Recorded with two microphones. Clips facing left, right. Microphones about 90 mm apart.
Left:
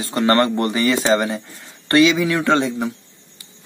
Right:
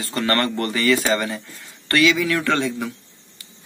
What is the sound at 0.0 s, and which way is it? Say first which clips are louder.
Speech: left 5 dB; 20° left (ahead or behind).